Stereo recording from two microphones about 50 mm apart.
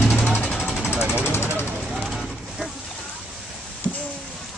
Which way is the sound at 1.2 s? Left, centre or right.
Left.